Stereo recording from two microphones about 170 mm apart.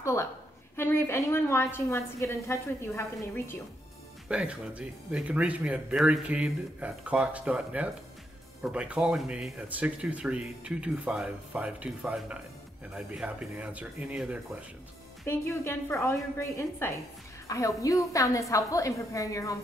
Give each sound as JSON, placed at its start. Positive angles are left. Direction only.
{"t": 0.0, "sound": "a woman's voice", "side_deg": 15}
{"t": 4.3, "sound": "speech", "side_deg": -5}
{"t": 15.2, "sound": "a woman's voice", "side_deg": 15}